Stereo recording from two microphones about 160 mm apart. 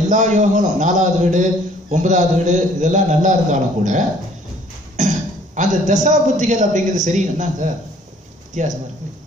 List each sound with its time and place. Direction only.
0.1 s a man's voice: 50° right (ahead or behind)
5.0 s throat clearing: 50° right (ahead or behind)
5.6 s a man's voice: 50° right (ahead or behind)